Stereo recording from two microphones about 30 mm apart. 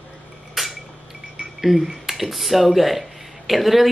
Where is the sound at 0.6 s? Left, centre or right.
Centre.